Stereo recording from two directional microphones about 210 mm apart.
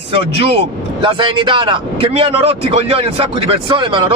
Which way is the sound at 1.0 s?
25° right (ahead or behind).